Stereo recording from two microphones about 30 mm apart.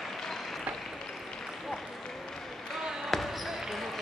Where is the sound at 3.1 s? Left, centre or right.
Centre.